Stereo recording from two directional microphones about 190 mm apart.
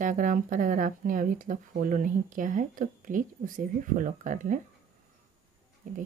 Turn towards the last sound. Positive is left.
turn(degrees=-45)  # may be behind; listen again after turning